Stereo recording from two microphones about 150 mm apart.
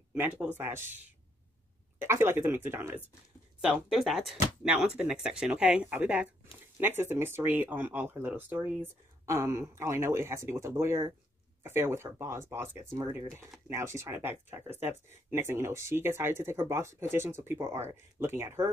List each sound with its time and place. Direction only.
0.1 s speech: 10° right (ahead or behind)
2.0 s speech: 15° right (ahead or behind)
3.6 s speech: 5° right (ahead or behind)